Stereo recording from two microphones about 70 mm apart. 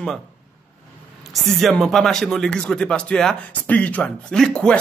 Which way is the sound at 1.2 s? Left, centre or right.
Centre.